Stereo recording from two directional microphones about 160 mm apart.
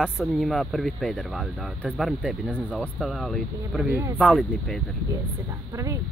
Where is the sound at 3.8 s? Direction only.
10° right (ahead or behind).